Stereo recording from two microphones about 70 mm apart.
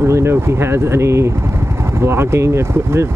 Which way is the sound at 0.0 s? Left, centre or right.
Right.